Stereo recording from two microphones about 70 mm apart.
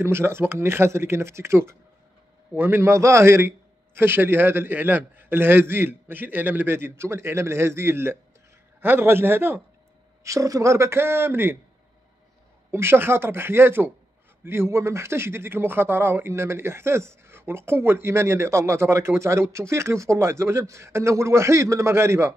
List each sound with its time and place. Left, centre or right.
0.0 s speech: right
10.2 s speech: right
12.7 s speech: right